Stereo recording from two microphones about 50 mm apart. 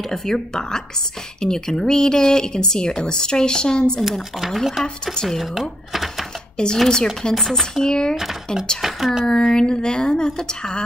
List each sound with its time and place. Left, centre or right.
0.1 s speech: centre
4.4 s speech: centre
4.8 s speech: centre
5.4 s speech: centre
6.6 s speech: centre
7.3 s speech: centre
7.9 s speech: centre
8.8 s speech: centre
9.2 s speech: centre